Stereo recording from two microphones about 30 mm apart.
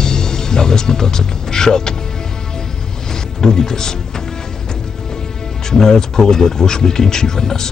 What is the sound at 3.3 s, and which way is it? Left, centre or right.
Speech, left.